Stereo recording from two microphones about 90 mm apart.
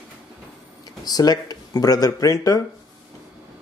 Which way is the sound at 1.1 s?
45° left (ahead or behind).